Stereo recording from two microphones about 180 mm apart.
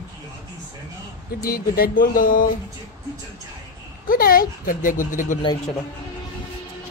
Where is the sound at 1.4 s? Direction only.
55° left (ahead or behind).